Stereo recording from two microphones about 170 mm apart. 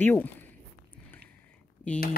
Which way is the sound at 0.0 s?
10° left (ahead or behind).